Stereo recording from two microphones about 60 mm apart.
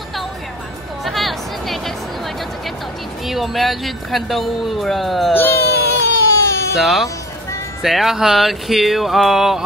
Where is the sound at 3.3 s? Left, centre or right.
Centre.